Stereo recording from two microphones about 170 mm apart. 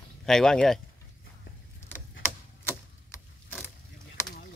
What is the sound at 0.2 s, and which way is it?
Speech, 5° left (ahead or behind).